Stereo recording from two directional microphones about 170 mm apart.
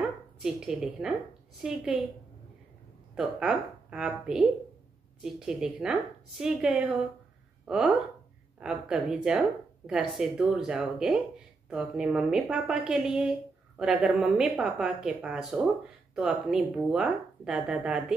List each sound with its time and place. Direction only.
0.4 s speech: 5° right (ahead or behind)
3.2 s speech: 5° right (ahead or behind)